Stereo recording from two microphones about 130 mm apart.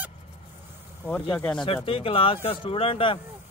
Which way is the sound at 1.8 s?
45° left (ahead or behind).